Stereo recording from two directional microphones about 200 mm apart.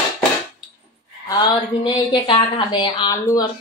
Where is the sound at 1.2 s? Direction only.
20° left (ahead or behind).